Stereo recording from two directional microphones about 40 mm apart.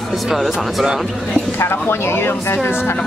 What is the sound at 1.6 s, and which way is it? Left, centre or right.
Speech, left.